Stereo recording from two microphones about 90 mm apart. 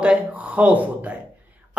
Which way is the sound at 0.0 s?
15° right (ahead or behind).